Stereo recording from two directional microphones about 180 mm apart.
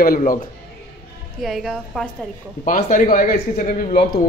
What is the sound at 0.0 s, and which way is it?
Speech, 50° left (ahead or behind).